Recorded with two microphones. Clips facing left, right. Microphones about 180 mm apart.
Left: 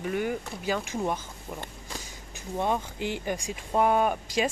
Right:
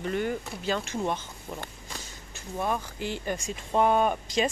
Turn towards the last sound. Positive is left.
turn(degrees=10)  # may be behind; listen again after turning